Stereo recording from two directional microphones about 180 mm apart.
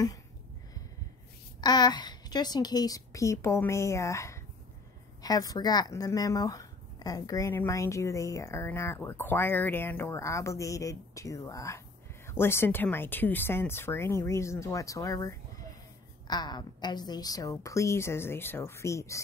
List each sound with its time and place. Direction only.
1.6 s speech: 25° left (ahead or behind)